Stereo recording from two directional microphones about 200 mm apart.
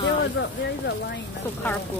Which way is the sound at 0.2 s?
60° left (ahead or behind).